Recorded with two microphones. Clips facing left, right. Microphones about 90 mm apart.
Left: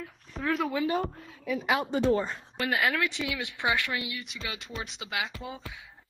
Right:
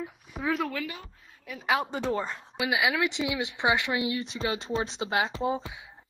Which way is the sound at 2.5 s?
10° right (ahead or behind).